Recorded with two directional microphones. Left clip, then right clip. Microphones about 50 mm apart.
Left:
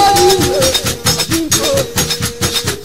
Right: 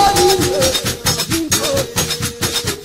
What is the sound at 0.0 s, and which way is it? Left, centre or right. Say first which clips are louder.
Music: left 3 dB; left.